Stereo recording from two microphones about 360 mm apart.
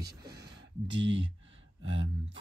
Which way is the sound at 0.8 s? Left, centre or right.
Right.